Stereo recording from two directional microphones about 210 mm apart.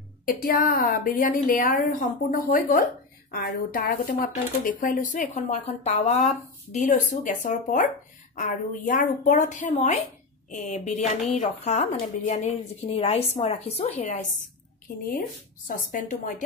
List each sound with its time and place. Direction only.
0.3 s a woman's voice: 40° left (ahead or behind)